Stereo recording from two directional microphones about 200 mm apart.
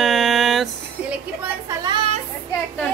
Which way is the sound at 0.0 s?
Centre (ahead or behind).